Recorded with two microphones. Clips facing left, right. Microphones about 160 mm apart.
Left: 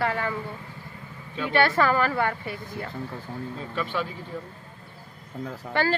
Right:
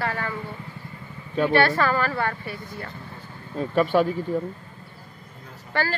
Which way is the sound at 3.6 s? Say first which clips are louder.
Right 11 dB; 50° right (ahead or behind).